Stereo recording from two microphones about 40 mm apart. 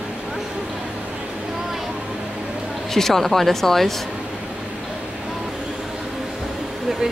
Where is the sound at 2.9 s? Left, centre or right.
Centre.